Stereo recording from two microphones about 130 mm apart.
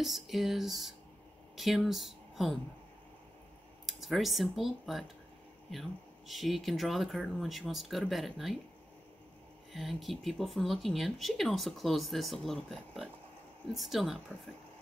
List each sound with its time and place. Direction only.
0.0 s speech: centre (ahead or behind)
3.8 s speech: centre (ahead or behind)
9.7 s speech: centre (ahead or behind)